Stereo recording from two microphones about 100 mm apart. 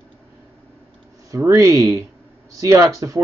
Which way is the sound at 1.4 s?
30° right (ahead or behind).